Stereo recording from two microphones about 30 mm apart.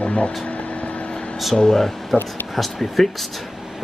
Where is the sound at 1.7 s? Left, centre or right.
Centre.